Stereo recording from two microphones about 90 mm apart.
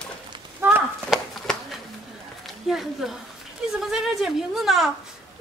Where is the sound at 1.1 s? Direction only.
5° right (ahead or behind).